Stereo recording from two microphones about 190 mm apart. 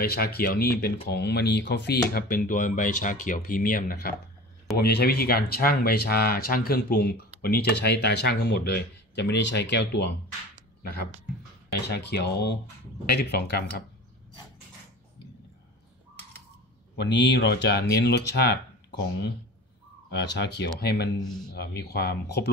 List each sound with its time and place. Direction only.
0.0 s speech: 55° left (ahead or behind)
11.9 s speech: 60° left (ahead or behind)
16.9 s speech: 65° left (ahead or behind)